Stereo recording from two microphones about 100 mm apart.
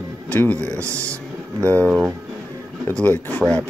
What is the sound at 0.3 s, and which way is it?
Speech, 15° left (ahead or behind).